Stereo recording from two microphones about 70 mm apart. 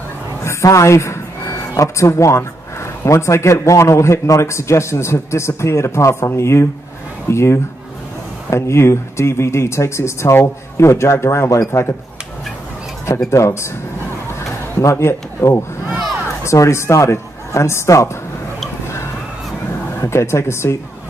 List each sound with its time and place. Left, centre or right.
0.4 s speech: left
13.3 s speech: left
14.8 s speech: left
20.0 s speech: left